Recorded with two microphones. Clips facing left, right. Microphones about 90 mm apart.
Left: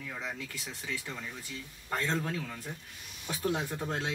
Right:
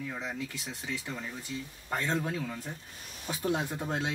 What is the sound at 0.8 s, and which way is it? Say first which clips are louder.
Speech: right 2 dB; 15° right (ahead or behind).